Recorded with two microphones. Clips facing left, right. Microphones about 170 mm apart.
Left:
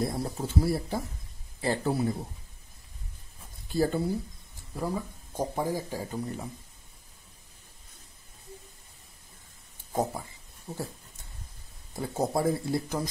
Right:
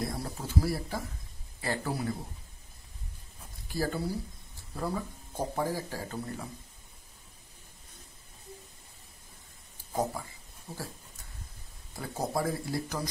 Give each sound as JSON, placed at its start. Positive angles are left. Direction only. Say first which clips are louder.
{"t": 0.0, "sound": "speech", "louder": "left 5 dB", "side_deg": 25}
{"t": 3.7, "sound": "speech", "louder": "left 5 dB", "side_deg": 25}
{"t": 4.7, "sound": "speech", "louder": "left 2 dB", "side_deg": 10}
{"t": 11.9, "sound": "speech", "louder": "left 4 dB", "side_deg": 25}